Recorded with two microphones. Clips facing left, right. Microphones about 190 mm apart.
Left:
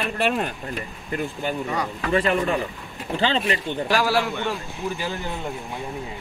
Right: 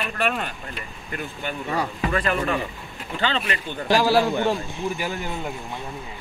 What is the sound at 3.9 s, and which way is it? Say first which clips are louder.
Speech: right 4 dB; 25° right (ahead or behind).